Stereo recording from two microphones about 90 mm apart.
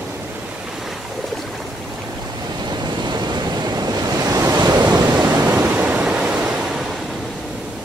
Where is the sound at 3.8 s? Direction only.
45° right (ahead or behind).